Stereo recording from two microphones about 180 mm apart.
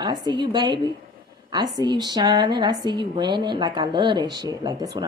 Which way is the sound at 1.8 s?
25° right (ahead or behind).